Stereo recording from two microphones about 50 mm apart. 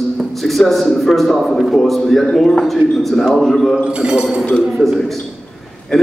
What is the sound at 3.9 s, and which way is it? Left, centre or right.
Speech, centre.